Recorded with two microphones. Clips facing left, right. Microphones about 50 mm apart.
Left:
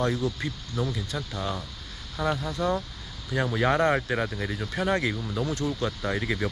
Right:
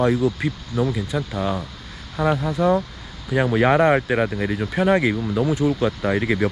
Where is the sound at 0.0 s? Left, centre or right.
Right.